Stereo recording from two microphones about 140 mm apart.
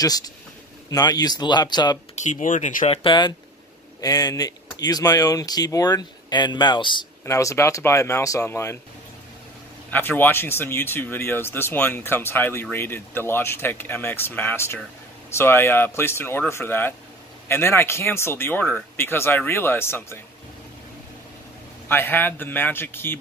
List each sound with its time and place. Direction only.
0.0 s speech: 25° left (ahead or behind)
2.2 s speech: 60° left (ahead or behind)
2.9 s speech: 35° left (ahead or behind)
7.2 s speech: 20° left (ahead or behind)
9.8 s speech: 15° left (ahead or behind)
21.8 s speech: 15° left (ahead or behind)